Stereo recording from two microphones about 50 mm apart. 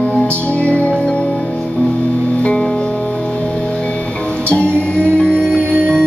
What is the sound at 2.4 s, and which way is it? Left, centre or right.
Music, left.